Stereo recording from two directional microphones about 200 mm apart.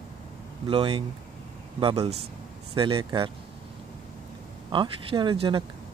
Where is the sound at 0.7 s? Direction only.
25° right (ahead or behind).